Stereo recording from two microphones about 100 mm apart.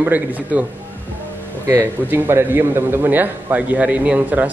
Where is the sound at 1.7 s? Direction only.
20° right (ahead or behind).